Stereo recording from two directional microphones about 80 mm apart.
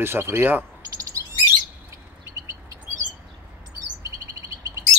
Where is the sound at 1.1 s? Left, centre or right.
Right.